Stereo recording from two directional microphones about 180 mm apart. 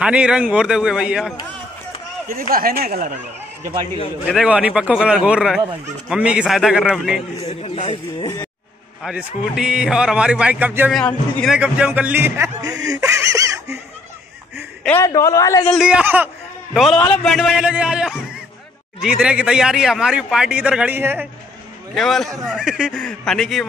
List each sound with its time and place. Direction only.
0.0 s speech: 5° right (ahead or behind)
2.2 s speech: 50° right (ahead or behind)
4.3 s speech: 5° right (ahead or behind)
7.3 s a man's voice: 35° left (ahead or behind)
8.2 s speech: 25° left (ahead or behind)
9.0 s speech: 5° right (ahead or behind)
10.9 s speech: 5° left (ahead or behind)
11.5 s speech: 5° right (ahead or behind)
14.8 s a man's voice: 10° left (ahead or behind)
15.7 s speech: 5° right (ahead or behind)
21.9 s speech: centre (ahead or behind)